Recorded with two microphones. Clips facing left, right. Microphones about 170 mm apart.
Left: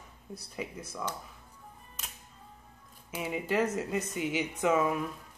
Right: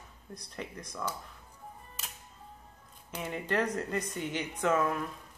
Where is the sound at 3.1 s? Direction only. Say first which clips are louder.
Left 2 dB; 5° left (ahead or behind).